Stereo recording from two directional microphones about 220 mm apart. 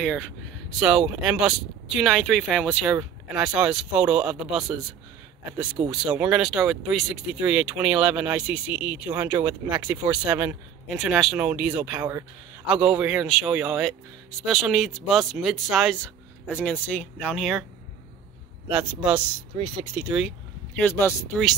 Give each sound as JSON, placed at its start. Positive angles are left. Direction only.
{"t": 0.7, "sound": "speech", "side_deg": 0}
{"t": 5.9, "sound": "speech", "side_deg": -5}
{"t": 18.7, "sound": "speech", "side_deg": -5}
{"t": 19.5, "sound": "speech", "side_deg": -25}
{"t": 20.0, "sound": "a sound", "side_deg": -5}
{"t": 20.9, "sound": "speech", "side_deg": 10}